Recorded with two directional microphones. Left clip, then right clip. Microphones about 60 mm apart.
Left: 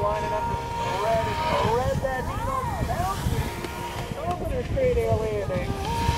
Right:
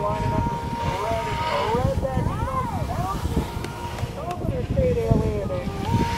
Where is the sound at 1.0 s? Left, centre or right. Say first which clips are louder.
Left 3 dB; centre.